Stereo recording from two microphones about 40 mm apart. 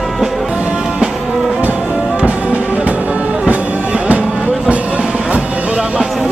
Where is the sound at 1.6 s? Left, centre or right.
Right.